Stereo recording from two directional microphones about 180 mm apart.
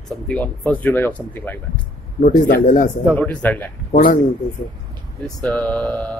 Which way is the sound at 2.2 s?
45° left (ahead or behind).